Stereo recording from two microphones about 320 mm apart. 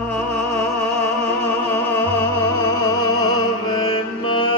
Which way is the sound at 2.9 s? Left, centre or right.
Centre.